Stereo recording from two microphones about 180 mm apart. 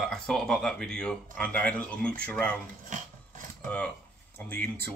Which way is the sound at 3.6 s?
5° left (ahead or behind).